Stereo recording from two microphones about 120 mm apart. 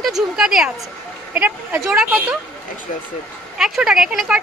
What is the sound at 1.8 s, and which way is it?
Speech, 5° right (ahead or behind).